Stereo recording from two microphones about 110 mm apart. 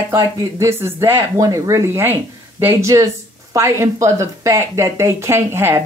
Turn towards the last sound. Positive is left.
turn(degrees=-25)  # may be behind; listen again after turning